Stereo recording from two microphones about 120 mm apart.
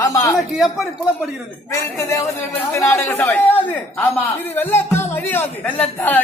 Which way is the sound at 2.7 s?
25° left (ahead or behind).